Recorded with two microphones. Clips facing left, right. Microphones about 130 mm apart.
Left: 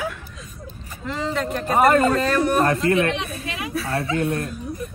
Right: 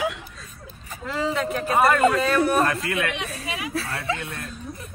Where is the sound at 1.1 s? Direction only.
5° right (ahead or behind).